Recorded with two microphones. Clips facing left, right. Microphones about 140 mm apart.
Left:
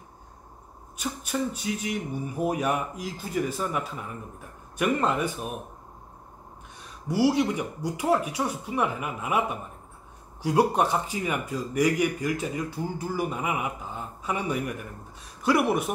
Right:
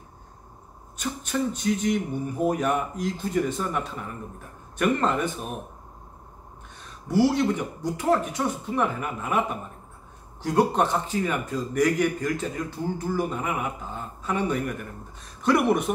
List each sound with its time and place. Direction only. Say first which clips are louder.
0.9 s speech: right 2 dB; 10° left (ahead or behind)
6.8 s speech: right 2 dB; 10° left (ahead or behind)